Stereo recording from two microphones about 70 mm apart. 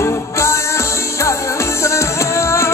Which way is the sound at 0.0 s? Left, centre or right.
Left.